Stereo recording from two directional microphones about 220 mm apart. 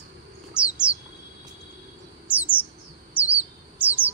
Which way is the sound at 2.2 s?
5° right (ahead or behind).